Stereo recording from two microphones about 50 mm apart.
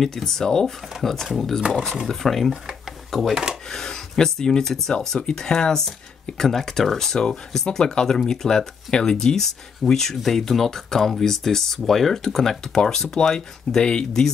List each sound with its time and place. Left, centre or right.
0.0 s speech: centre